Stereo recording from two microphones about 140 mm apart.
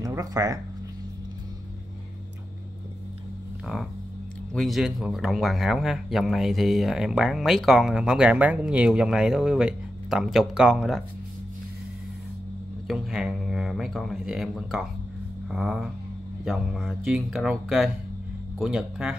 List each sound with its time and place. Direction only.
0.0 s speech: 25° right (ahead or behind)
4.6 s speech: centre (ahead or behind)
12.8 s speech: centre (ahead or behind)